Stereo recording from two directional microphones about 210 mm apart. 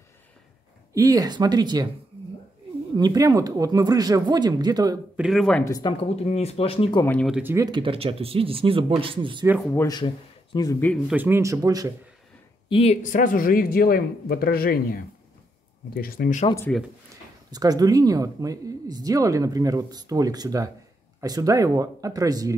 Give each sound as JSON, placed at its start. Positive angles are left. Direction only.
{"t": 0.9, "sound": "speech", "side_deg": -15}
{"t": 3.0, "sound": "speech", "side_deg": -15}
{"t": 5.1, "sound": "speech", "side_deg": 0}
{"t": 5.7, "sound": "speech", "side_deg": 20}
{"t": 6.2, "sound": "speech", "side_deg": 30}
{"t": 7.1, "sound": "speech", "side_deg": 0}
{"t": 7.5, "sound": "speech", "side_deg": -20}
{"t": 9.8, "sound": "speech", "side_deg": 20}
{"t": 11.1, "sound": "speech", "side_deg": -10}
{"t": 12.6, "sound": "speech", "side_deg": 30}
{"t": 16.4, "sound": "speech", "side_deg": 15}
{"t": 17.5, "sound": "speech", "side_deg": -20}